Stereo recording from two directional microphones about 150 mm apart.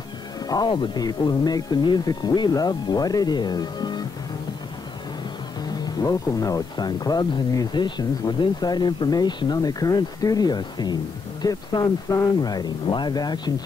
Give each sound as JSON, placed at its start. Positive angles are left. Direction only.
{"t": 0.5, "sound": "speech", "side_deg": 30}
{"t": 5.8, "sound": "speech", "side_deg": 25}